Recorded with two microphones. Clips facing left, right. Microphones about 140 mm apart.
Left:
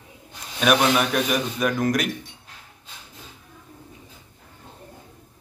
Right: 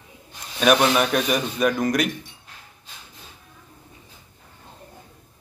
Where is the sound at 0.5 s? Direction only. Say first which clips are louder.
Right 1 dB; centre (ahead or behind).